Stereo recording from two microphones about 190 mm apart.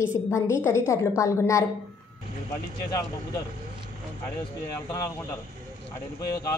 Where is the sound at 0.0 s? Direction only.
15° left (ahead or behind).